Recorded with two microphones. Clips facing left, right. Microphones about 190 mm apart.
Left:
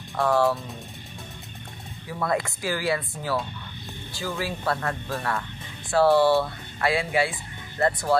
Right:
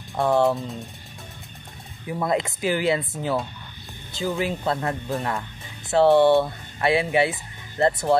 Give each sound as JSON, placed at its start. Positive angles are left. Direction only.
{"t": 0.1, "sound": "speech", "side_deg": -20}
{"t": 2.0, "sound": "speech", "side_deg": -20}